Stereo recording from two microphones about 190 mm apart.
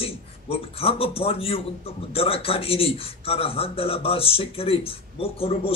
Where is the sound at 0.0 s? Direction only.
30° left (ahead or behind).